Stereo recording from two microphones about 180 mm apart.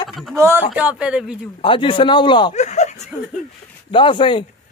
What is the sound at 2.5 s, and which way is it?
Speech, 40° left (ahead or behind).